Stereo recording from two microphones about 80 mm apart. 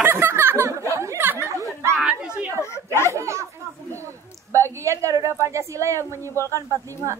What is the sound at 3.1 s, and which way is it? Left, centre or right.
A woman's voice, right.